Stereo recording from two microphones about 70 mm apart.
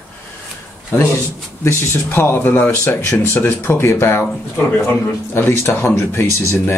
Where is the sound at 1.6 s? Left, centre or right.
Left.